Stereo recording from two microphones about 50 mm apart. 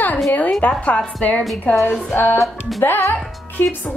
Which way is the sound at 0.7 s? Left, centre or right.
Centre.